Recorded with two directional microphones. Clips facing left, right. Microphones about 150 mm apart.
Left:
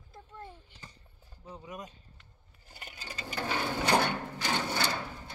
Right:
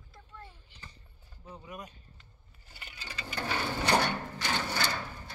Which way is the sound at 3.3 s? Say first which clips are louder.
Left 1 dB; 15° left (ahead or behind).